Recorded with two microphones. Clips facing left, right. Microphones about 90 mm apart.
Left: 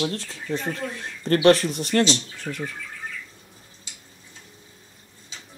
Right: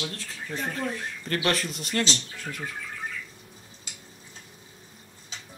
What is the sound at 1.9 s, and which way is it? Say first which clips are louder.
Speech: left 7 dB; 45° left (ahead or behind).